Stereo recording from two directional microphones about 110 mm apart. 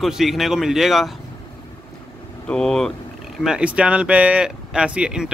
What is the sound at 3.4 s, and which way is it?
Speech, 5° right (ahead or behind).